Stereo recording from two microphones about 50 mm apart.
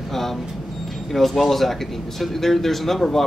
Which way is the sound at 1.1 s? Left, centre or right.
Centre.